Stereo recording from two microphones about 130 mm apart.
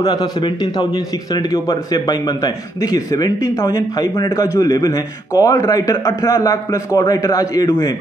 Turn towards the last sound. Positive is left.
turn(degrees=30)  # may be behind; listen again after turning